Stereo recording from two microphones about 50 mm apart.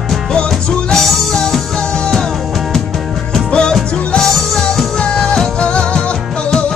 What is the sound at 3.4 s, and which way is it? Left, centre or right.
Music, centre.